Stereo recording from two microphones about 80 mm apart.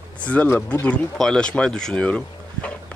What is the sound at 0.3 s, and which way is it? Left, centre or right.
Speech, centre.